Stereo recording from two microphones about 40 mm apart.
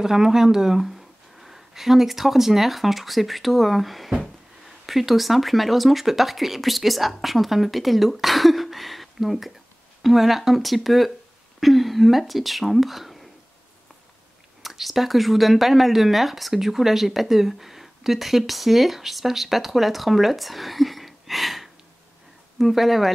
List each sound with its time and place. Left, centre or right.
0.0 s speech: centre
14.6 s speech: centre